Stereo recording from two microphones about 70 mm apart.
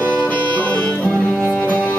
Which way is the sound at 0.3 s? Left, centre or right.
Left.